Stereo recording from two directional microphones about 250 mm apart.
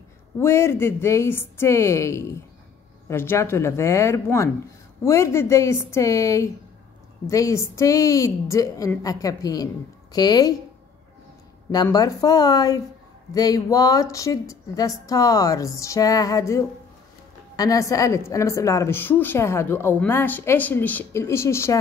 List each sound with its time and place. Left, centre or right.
0.4 s a woman's voice: centre
11.7 s a woman's voice: centre